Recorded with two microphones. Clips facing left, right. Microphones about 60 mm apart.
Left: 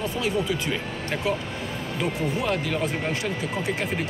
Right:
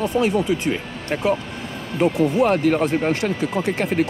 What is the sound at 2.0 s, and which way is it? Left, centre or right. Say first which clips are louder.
Speech: right 10 dB; right.